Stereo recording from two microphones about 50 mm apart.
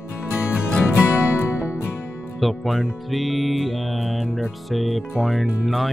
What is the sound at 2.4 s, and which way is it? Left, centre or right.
Music, centre.